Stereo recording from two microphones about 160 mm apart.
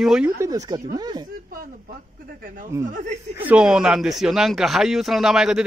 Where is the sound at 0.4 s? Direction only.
20° right (ahead or behind).